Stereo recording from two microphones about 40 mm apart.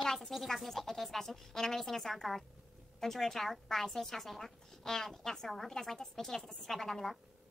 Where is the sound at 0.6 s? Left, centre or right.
Centre.